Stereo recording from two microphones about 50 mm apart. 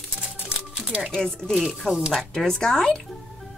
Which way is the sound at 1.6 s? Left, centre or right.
Centre.